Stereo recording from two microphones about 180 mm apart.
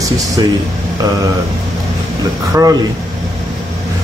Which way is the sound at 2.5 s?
20° right (ahead or behind).